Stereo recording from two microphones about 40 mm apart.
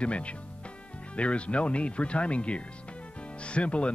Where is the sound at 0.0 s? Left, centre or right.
Left.